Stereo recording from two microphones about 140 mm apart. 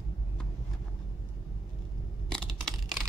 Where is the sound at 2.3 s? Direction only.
5° left (ahead or behind).